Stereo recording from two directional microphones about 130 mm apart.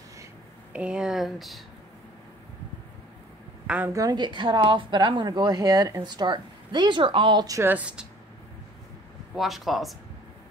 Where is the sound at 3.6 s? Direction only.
10° right (ahead or behind).